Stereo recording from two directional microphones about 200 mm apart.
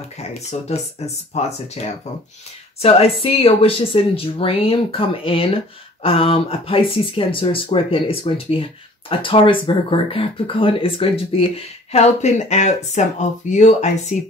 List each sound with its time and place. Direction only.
0.5 s speech: 35° left (ahead or behind)